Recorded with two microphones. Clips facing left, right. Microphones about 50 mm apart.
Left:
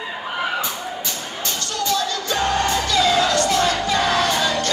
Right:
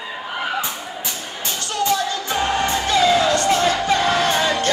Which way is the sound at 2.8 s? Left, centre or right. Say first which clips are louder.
Right 4 dB; right.